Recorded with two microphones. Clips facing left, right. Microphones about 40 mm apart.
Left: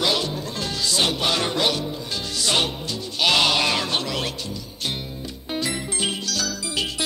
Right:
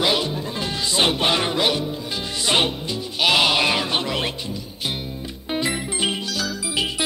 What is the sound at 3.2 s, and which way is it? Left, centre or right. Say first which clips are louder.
Music: right 1 dB; centre.